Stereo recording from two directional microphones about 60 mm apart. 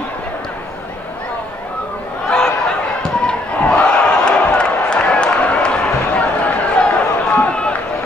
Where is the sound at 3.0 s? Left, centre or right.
Centre.